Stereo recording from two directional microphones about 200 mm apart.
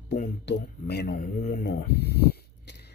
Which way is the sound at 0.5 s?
55° left (ahead or behind).